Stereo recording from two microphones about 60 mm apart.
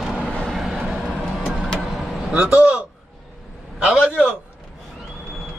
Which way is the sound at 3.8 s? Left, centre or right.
Centre.